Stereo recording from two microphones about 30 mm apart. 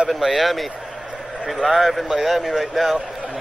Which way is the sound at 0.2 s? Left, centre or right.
Centre.